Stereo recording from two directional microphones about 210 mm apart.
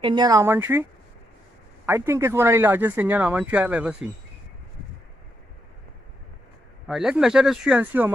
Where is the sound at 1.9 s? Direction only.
10° right (ahead or behind).